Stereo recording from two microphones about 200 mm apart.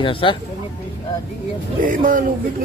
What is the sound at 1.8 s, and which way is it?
Speech, 45° right (ahead or behind).